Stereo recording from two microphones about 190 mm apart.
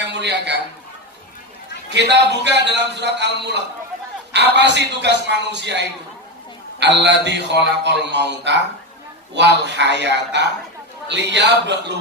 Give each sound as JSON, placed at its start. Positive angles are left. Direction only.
{"t": 0.0, "sound": "a man's voice", "side_deg": -65}
{"t": 1.9, "sound": "a man's voice", "side_deg": -65}
{"t": 9.7, "sound": "a man's voice", "side_deg": -65}